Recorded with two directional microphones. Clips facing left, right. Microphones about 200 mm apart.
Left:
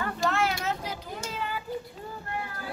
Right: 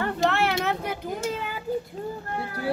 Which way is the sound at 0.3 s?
65° right (ahead or behind).